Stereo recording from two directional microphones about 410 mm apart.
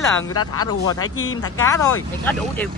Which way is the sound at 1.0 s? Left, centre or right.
Left.